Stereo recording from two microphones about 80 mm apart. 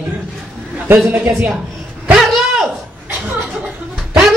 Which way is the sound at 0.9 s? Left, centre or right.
Right.